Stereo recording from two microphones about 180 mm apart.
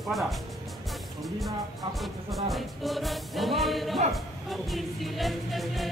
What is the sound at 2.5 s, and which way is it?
Music, centre (ahead or behind).